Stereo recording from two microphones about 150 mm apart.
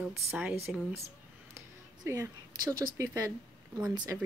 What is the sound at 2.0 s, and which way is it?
A woman's voice, 15° right (ahead or behind).